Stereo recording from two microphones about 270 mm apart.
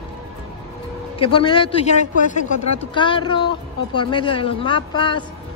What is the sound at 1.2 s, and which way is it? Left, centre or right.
Speech, centre.